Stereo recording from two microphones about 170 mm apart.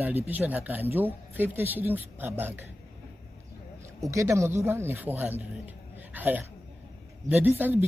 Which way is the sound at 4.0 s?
15° right (ahead or behind).